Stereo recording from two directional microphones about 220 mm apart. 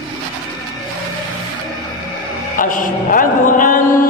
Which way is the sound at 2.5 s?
35° left (ahead or behind).